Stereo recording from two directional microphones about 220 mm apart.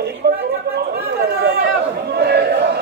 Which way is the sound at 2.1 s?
45° right (ahead or behind).